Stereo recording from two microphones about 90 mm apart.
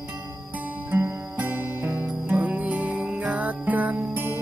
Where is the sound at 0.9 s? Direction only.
20° right (ahead or behind).